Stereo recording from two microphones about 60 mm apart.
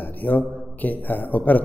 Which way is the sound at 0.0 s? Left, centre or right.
Left.